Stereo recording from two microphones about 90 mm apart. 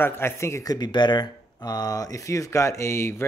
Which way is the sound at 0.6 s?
50° left (ahead or behind).